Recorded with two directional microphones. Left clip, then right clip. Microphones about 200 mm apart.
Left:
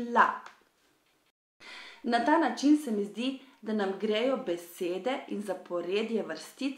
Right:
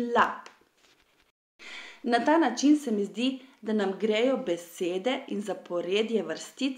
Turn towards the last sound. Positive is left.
turn(degrees=-40)  # may be behind; listen again after turning